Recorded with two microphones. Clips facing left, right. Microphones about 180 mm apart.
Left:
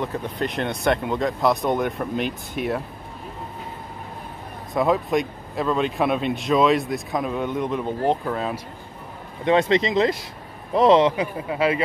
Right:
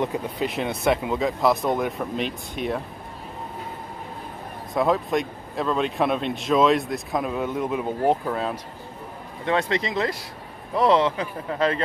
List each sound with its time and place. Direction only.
0.0 s speech: 10° right (ahead or behind)
4.7 s speech: centre (ahead or behind)
9.4 s speech: 20° left (ahead or behind)